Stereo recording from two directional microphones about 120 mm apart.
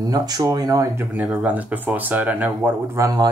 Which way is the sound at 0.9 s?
10° right (ahead or behind).